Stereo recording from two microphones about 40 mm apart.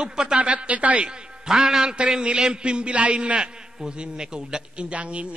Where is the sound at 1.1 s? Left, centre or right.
Right.